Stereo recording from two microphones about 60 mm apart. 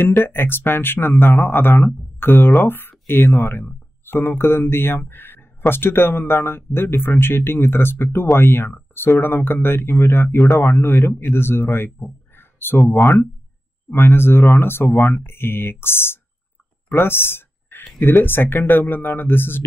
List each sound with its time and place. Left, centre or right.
0.0 s speech: left
16.9 s a sound: left
17.9 s speech: left